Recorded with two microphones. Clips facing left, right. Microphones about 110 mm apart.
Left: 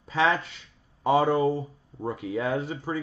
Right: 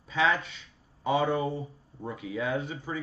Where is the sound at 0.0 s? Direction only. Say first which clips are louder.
Left 3 dB; 40° left (ahead or behind).